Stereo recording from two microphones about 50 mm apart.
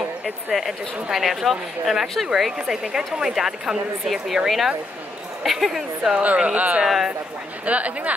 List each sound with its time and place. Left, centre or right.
0.2 s a woman's voice: centre
6.2 s speech: right